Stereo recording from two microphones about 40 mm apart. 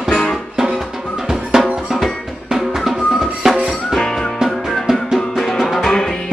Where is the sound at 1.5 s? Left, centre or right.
Centre.